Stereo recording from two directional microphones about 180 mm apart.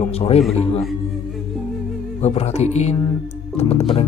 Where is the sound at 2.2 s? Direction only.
35° left (ahead or behind).